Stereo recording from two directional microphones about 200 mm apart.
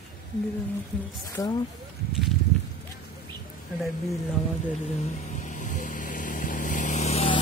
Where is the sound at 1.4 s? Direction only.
15° left (ahead or behind).